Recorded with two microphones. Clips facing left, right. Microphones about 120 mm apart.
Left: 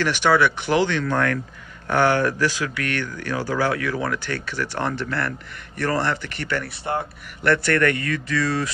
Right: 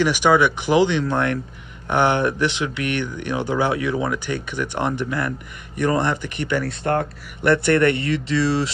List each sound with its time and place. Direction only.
0.0 s speech: 10° right (ahead or behind)
6.8 s speech: 15° left (ahead or behind)
7.4 s speech: 20° right (ahead or behind)